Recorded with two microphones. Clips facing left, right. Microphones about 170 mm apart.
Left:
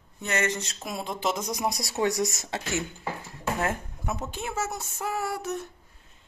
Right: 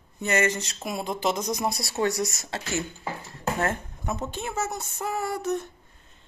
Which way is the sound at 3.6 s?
5° left (ahead or behind).